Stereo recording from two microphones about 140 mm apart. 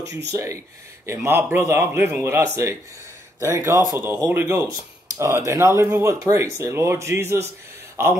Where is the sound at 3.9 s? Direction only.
20° right (ahead or behind).